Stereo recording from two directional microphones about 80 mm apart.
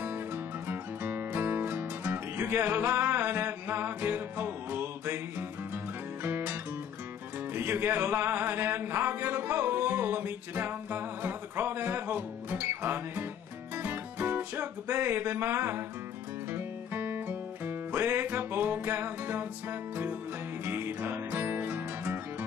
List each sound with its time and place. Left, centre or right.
0.7 s music: right
6.2 s music: right
7.5 s a sound: right
13.8 s music: right
20.6 s music: right